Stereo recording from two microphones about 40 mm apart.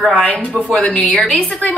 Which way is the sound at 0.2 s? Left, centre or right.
Left.